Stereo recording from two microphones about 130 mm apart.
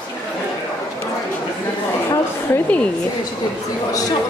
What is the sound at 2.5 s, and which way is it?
Speech, 10° left (ahead or behind).